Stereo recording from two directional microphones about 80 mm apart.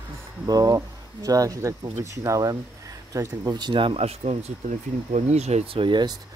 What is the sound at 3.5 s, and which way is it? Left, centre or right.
Speech, right.